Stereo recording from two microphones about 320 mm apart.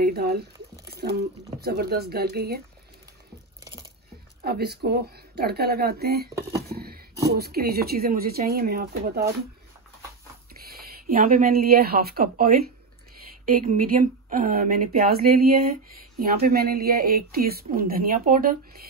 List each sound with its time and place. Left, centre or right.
0.0 s speech: right
4.4 s speech: right
6.7 s a sound: right
7.3 s speech: right
11.1 s speech: right